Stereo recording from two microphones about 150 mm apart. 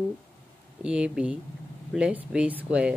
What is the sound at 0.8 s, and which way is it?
Speech, 5° right (ahead or behind).